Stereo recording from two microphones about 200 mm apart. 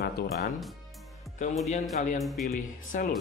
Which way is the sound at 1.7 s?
35° left (ahead or behind).